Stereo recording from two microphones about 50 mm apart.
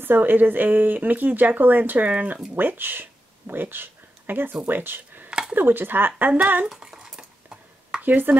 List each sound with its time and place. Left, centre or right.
0.0 s speech: right
2.5 s speech: right
6.6 s speech: centre
7.0 s dishes: centre
8.0 s speech: right